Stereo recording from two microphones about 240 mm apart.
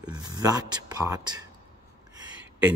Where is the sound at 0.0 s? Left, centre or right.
Centre.